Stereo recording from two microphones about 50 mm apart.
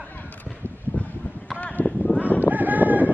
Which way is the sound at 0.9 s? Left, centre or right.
Left.